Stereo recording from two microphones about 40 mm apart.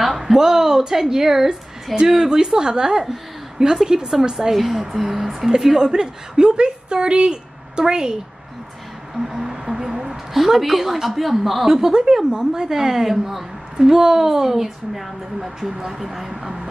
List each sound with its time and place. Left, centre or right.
0.0 s a woman's voice: centre
4.6 s a woman's voice: centre
9.1 s a woman's voice: centre